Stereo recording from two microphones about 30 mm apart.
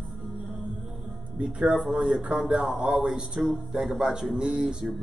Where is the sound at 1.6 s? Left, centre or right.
Right.